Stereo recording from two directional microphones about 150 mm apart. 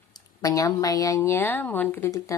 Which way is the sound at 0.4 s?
25° left (ahead or behind).